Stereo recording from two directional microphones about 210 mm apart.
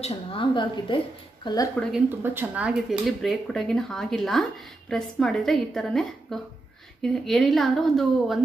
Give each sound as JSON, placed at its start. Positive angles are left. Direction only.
{"t": 0.0, "sound": "a woman's voice", "side_deg": 25}
{"t": 1.8, "sound": "speech", "side_deg": 0}